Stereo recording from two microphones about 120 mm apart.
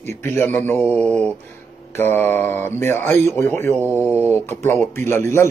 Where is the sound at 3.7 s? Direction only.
15° right (ahead or behind).